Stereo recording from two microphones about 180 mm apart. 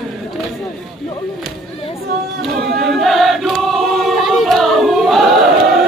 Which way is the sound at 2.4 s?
Centre (ahead or behind).